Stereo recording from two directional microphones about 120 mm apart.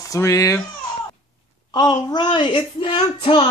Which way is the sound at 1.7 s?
35° left (ahead or behind).